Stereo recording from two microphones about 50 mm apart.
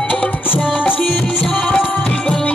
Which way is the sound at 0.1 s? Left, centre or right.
Left.